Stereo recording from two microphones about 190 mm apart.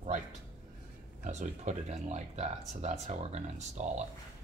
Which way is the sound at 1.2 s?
40° right (ahead or behind).